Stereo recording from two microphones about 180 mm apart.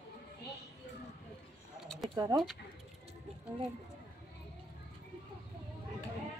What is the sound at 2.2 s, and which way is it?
Speech, 25° right (ahead or behind).